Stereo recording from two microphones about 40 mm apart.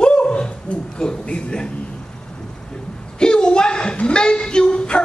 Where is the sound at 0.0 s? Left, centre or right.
Left.